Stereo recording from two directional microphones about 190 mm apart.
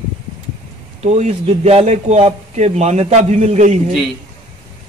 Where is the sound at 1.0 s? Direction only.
35° right (ahead or behind).